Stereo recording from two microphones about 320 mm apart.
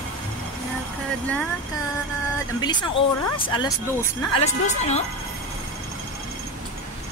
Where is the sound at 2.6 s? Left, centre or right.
Centre.